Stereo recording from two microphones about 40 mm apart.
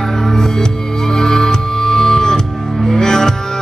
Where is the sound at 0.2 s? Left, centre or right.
Centre.